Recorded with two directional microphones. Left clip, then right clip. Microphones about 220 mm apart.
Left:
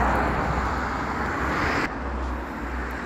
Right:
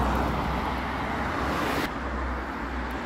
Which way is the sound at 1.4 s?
20° right (ahead or behind).